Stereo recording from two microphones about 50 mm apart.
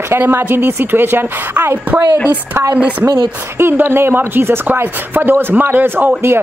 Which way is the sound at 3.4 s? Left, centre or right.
Right.